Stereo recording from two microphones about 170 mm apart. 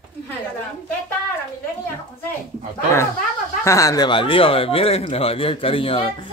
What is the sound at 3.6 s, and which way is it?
Speech, 20° left (ahead or behind).